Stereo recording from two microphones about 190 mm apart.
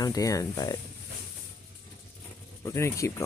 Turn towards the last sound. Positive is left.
turn(degrees=15)  # may be behind; listen again after turning